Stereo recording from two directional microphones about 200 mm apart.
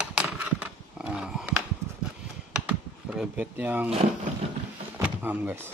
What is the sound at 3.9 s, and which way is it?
Speech, 30° right (ahead or behind).